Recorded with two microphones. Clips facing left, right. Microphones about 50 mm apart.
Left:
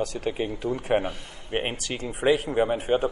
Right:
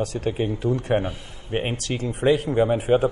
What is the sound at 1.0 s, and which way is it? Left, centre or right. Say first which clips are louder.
Speech: right 2 dB; left.